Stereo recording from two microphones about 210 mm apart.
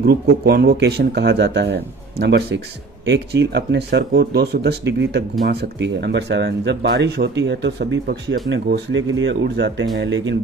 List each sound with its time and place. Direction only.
0.0 s speech: 50° right (ahead or behind)